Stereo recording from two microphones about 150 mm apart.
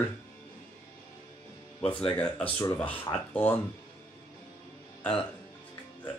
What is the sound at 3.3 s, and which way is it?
Speech, 15° left (ahead or behind).